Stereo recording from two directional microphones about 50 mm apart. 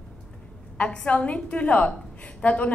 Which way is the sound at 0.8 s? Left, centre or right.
Left.